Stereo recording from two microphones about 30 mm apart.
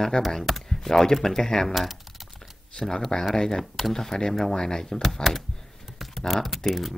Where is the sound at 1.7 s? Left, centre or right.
Centre.